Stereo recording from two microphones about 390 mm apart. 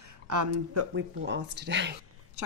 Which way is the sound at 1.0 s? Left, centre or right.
Right.